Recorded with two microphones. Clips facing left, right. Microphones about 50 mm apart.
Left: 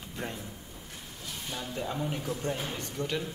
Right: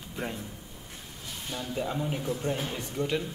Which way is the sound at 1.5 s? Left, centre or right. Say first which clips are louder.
Right 3 dB; centre.